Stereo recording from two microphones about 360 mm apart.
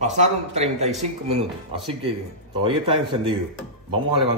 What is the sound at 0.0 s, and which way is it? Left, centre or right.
Speech, centre.